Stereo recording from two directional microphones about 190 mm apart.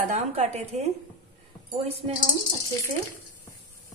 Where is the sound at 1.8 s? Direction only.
30° right (ahead or behind).